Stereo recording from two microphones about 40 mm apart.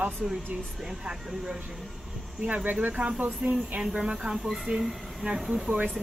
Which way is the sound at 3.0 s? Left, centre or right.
Right.